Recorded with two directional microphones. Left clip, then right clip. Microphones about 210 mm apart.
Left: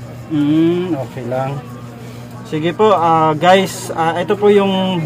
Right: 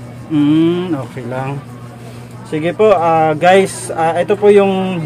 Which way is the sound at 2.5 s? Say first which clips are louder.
Right 2 dB; 10° right (ahead or behind).